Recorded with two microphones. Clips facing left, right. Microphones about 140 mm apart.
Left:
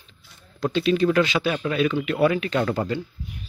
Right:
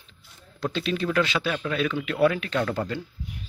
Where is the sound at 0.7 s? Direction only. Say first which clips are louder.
Left 6 dB; 5° left (ahead or behind).